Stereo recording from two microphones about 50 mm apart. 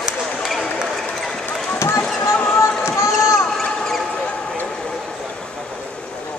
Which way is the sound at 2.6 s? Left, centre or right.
Left.